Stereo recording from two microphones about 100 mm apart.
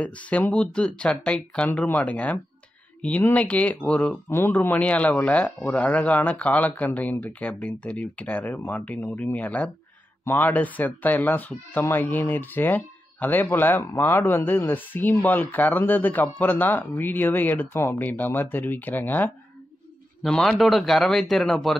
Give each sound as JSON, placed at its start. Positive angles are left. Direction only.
{"t": 0.0, "sound": "speech", "side_deg": 15}
{"t": 4.3, "sound": "speech", "side_deg": 20}
{"t": 20.2, "sound": "a man's voice", "side_deg": 5}